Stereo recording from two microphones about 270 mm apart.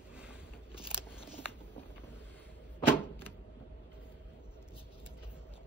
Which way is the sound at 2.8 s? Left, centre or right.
Centre.